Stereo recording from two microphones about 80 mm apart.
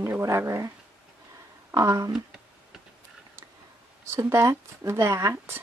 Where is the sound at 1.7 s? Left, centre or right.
Right.